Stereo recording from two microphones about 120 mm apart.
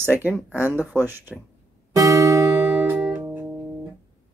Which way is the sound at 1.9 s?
25° right (ahead or behind).